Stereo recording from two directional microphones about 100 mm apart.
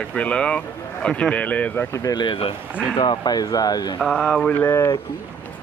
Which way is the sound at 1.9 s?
35° left (ahead or behind).